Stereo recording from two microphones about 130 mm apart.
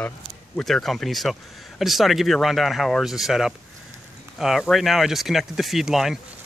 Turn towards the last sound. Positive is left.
turn(degrees=0)  # may be behind; listen again after turning